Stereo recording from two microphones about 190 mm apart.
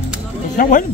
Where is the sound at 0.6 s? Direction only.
45° left (ahead or behind).